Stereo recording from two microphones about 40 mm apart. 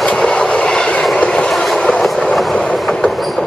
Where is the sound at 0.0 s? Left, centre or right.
Centre.